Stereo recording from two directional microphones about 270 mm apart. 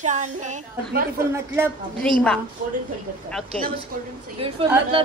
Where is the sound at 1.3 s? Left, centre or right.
Centre.